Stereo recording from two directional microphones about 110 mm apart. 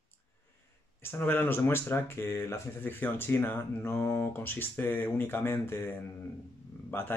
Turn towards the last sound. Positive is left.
turn(degrees=20)  # may be behind; listen again after turning